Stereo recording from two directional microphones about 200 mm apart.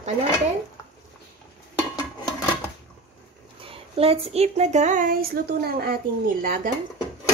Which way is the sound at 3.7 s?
30° right (ahead or behind).